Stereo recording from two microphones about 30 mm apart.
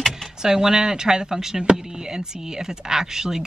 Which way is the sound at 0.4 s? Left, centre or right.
Right.